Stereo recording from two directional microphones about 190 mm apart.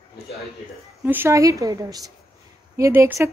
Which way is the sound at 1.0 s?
10° right (ahead or behind).